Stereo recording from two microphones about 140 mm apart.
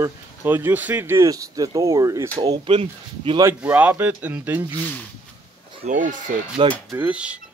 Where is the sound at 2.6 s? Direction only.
40° right (ahead or behind).